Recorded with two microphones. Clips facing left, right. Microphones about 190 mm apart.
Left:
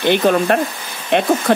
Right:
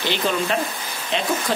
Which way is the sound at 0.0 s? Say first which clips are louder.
Left 9 dB; 55° left (ahead or behind).